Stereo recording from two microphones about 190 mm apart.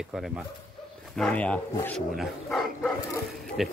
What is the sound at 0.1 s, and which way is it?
Speech, 5° right (ahead or behind).